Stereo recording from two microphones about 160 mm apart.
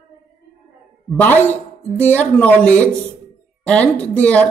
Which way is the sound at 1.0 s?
10° left (ahead or behind).